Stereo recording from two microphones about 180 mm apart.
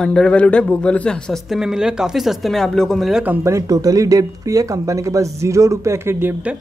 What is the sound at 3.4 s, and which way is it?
A man's voice, 15° right (ahead or behind).